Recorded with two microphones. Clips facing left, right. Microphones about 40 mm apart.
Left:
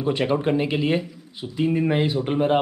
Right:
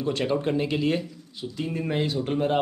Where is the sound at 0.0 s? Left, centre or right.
Left.